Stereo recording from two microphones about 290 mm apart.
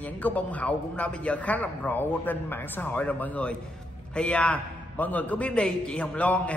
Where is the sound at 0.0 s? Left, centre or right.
Centre.